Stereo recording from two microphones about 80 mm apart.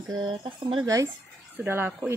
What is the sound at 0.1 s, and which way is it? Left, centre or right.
Speech, right.